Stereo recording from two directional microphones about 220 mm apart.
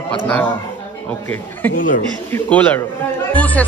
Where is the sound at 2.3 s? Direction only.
10° left (ahead or behind).